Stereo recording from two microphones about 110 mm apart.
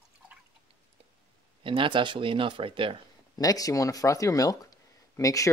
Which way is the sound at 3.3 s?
35° left (ahead or behind).